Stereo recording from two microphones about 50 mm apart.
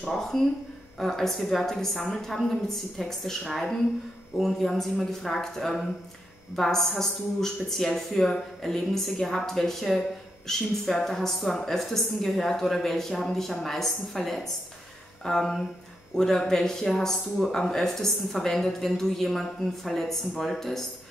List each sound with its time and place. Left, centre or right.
0.1 s a woman's voice: centre